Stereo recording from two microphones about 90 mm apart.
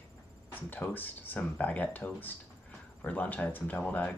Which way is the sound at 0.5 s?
20° left (ahead or behind).